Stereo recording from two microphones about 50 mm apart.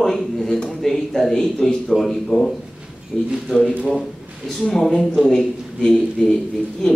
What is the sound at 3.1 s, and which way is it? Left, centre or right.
Speech, left.